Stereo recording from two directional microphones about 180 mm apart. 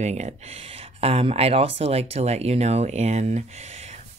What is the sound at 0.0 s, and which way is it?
Speech, 40° right (ahead or behind).